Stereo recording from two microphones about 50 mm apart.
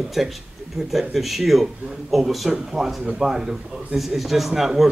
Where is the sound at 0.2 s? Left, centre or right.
Centre.